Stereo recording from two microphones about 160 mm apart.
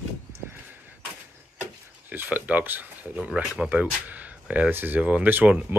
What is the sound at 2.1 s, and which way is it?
Speech, 10° right (ahead or behind).